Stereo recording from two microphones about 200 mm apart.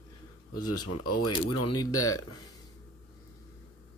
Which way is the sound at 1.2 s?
20° left (ahead or behind).